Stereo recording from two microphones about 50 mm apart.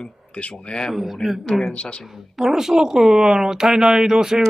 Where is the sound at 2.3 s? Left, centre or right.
Centre.